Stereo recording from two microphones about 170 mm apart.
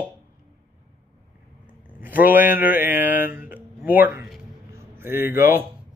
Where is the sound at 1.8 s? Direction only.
10° right (ahead or behind).